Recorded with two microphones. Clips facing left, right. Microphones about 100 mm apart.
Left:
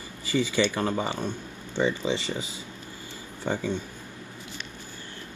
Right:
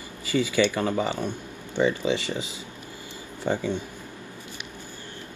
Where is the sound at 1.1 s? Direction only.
15° right (ahead or behind).